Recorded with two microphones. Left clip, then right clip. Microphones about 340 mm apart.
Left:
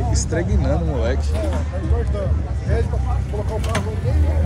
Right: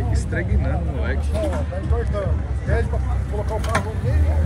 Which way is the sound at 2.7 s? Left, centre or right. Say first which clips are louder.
Even; centre.